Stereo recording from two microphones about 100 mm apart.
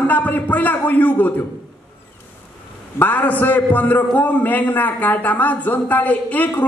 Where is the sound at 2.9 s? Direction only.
15° left (ahead or behind).